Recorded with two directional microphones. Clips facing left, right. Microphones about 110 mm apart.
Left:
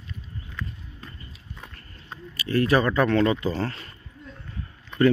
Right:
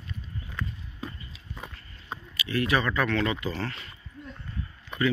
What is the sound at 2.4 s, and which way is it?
Speech, 40° left (ahead or behind).